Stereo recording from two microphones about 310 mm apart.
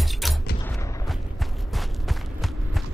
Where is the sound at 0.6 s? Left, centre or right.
Centre.